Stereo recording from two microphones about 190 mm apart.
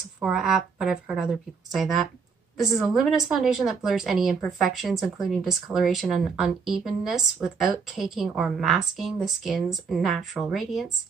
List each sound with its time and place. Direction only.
0.2 s a woman's voice: 5° right (ahead or behind)